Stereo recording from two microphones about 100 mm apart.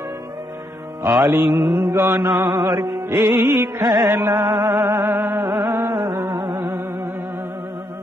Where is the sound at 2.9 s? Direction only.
25° right (ahead or behind).